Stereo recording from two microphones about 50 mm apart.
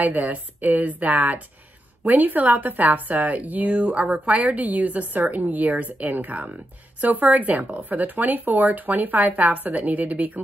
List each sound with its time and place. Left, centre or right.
0.0 s a woman's voice: right